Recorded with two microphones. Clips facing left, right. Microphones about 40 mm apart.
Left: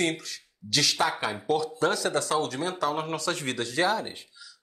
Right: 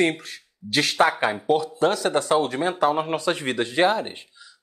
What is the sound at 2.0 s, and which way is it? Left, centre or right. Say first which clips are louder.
Speech: right 5 dB; right.